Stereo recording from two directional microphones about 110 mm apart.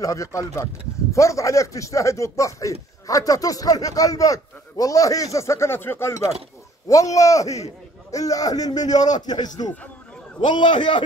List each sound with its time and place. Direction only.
0.0 s a man's voice: 30° left (ahead or behind); by 11.1 s 50° left (ahead or behind)